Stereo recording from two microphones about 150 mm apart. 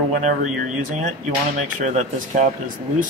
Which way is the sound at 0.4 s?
60° right (ahead or behind).